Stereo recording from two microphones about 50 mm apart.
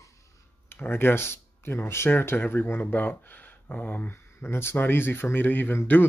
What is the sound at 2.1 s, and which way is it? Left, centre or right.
Speech, left.